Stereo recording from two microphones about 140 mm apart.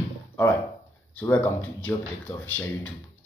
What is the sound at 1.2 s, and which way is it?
A man's voice, 15° left (ahead or behind).